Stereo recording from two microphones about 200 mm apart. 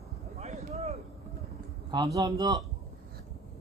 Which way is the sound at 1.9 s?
20° right (ahead or behind).